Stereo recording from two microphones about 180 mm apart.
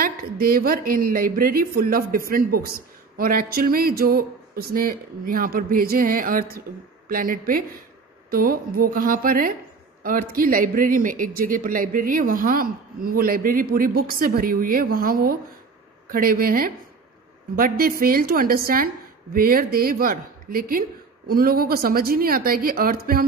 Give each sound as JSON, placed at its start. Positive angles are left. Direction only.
{"t": 0.0, "sound": "speech", "side_deg": -55}